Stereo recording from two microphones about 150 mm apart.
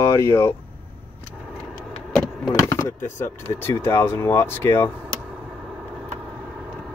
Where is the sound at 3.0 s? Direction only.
15° left (ahead or behind).